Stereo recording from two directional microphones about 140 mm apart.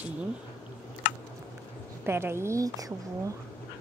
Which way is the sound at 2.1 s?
20° right (ahead or behind).